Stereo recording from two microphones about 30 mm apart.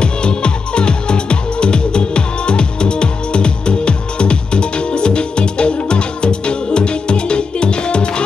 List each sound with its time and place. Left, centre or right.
0.0 s music: left